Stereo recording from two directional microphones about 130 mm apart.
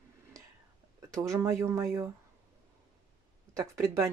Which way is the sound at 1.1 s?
20° right (ahead or behind).